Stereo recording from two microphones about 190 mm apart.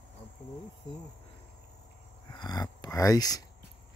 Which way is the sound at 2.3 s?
20° left (ahead or behind).